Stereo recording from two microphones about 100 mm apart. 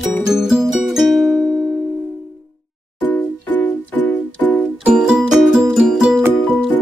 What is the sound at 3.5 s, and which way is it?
Music, 20° left (ahead or behind).